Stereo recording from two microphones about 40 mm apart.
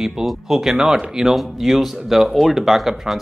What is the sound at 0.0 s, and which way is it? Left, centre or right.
Speech, centre.